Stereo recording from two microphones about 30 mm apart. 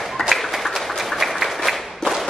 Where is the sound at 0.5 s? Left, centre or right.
Centre.